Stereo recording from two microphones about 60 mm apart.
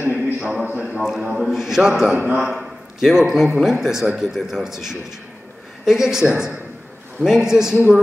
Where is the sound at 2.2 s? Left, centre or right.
Right.